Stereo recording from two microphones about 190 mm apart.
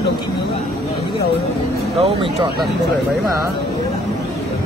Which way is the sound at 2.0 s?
30° right (ahead or behind).